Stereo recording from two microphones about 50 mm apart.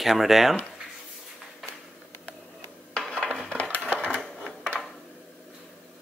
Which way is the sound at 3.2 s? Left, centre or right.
Centre.